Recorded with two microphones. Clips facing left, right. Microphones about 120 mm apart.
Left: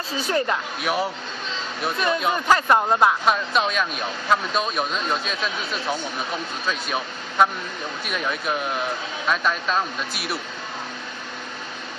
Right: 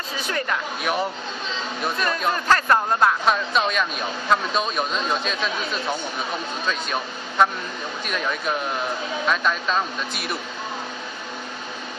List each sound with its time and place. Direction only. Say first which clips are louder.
0.2 s speech: left 4 dB; 30° left (ahead or behind)
0.8 s speech: left 1 dB; centre (ahead or behind)
3.3 s speech: even; centre (ahead or behind)